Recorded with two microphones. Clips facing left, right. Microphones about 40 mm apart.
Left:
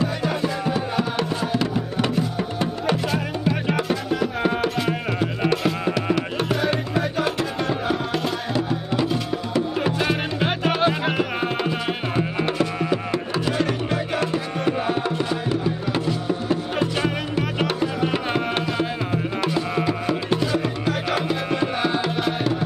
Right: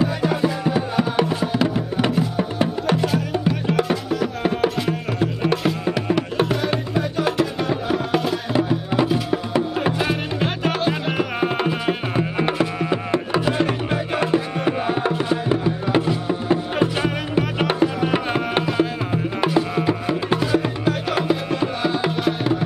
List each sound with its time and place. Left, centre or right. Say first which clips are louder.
0.0 s music: right 3 dB; centre
9.3 s music: right 2 dB; centre
9.9 s music: even; centre
12.9 s wood: right 3 dB; right
13.5 s music: even; centre
18.1 s tabla: right 2 dB; centre
19.8 s music: right 2 dB; centre
21.5 s music: even; centre